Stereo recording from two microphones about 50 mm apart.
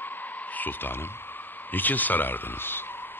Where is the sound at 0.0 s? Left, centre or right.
Left.